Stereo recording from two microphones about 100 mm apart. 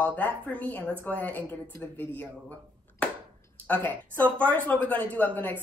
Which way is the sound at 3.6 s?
15° left (ahead or behind).